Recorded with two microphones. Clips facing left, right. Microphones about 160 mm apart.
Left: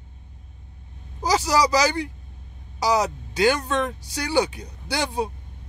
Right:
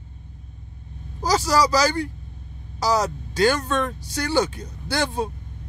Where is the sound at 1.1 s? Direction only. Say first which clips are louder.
Right 1 dB; 15° left (ahead or behind).